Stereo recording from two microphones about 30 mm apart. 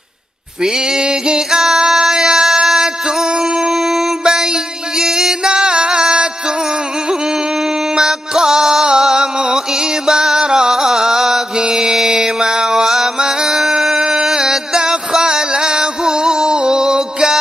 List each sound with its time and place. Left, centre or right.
1.0 s music: right
1.9 s a sound: centre
4.2 s mantra: right
4.9 s music: centre
7.9 s music: right
10.7 s music: centre
11.6 s mantra: centre
13.4 s music: centre